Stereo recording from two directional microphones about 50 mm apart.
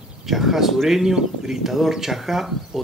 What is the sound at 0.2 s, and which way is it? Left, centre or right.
Speech, centre.